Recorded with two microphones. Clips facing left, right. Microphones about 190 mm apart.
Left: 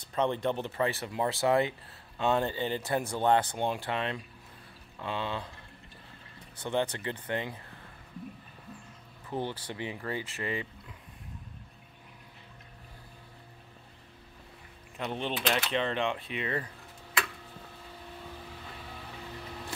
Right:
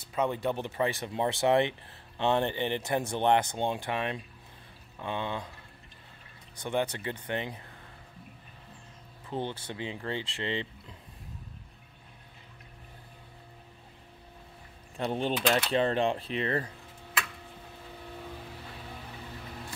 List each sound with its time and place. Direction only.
0.0 s speech: 5° right (ahead or behind)
6.6 s speech: 15° right (ahead or behind)
9.4 s speech: 20° right (ahead or behind)
15.0 s speech: 35° right (ahead or behind)